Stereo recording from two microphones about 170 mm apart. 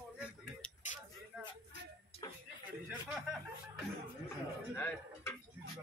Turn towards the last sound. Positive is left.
turn(degrees=15)  # may be behind; listen again after turning